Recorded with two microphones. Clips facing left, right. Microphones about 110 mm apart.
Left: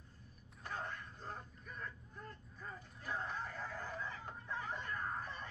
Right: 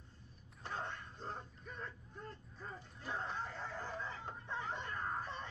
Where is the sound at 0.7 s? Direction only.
30° right (ahead or behind).